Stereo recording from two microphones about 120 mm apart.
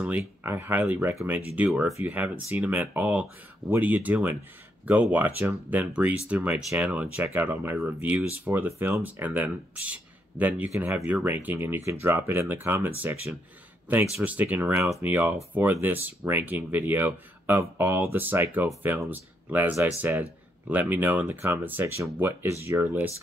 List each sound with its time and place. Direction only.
0.0 s speech: 15° right (ahead or behind)
14.2 s speech: 15° right (ahead or behind)